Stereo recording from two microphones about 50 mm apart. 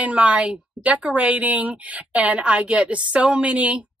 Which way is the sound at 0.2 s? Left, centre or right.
Right.